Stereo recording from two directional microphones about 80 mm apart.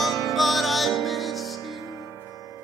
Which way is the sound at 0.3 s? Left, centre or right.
Centre.